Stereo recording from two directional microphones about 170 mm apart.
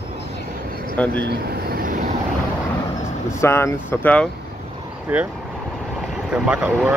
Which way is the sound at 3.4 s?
15° left (ahead or behind).